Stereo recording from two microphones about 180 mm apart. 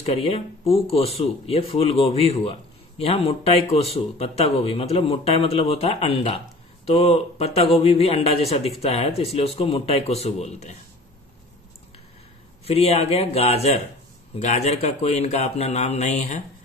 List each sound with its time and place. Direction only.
0.0 s speech: 35° left (ahead or behind)
12.6 s speech: 35° left (ahead or behind)